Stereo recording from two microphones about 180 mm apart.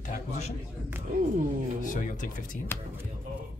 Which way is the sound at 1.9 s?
45° left (ahead or behind).